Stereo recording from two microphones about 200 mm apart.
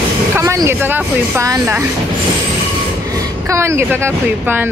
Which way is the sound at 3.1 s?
15° right (ahead or behind).